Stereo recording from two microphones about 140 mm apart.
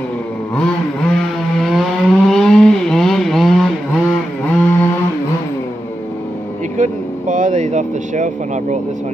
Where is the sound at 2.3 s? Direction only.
5° left (ahead or behind).